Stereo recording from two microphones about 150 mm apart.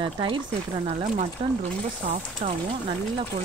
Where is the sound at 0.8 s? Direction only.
50° right (ahead or behind).